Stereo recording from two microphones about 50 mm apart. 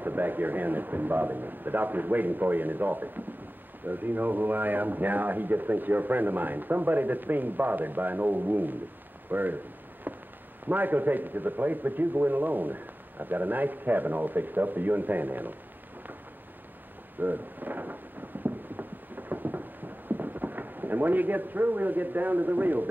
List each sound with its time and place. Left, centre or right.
0.0 s speech: right
10.1 s a sound: right
10.7 s speech: right
17.2 s speech: right
18.4 s clip-clop: right
20.1 s speech: right